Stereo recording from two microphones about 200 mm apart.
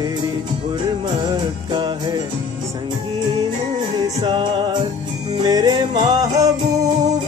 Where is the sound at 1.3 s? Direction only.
20° right (ahead or behind).